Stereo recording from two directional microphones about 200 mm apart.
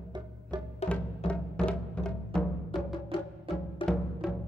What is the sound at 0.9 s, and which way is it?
Music, 5° left (ahead or behind).